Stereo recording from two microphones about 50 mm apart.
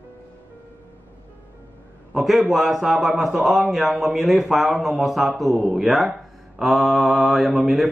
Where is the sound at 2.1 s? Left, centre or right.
Centre.